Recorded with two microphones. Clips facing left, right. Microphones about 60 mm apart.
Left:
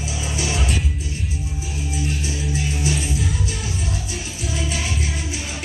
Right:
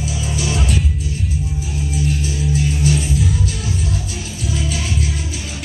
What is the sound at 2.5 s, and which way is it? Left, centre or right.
Music, centre.